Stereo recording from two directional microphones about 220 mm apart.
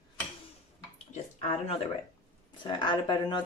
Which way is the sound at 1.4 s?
25° left (ahead or behind).